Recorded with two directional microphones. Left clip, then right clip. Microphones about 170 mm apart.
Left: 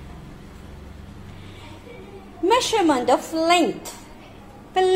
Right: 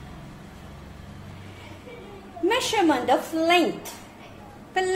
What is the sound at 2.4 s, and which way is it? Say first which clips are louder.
A woman's voice: left 3 dB; 35° left (ahead or behind).